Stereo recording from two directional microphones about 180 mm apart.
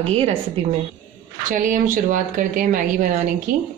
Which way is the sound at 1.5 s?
50° right (ahead or behind).